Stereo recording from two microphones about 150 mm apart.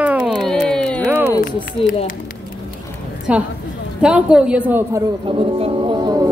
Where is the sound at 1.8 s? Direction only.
40° left (ahead or behind).